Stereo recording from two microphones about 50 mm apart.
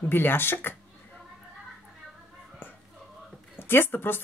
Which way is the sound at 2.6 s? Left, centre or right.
Left.